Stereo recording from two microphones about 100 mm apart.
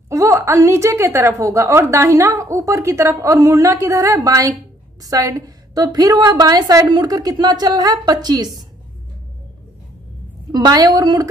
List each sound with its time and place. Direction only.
0.1 s a woman's voice: 30° right (ahead or behind)
10.5 s a woman's voice: 40° right (ahead or behind)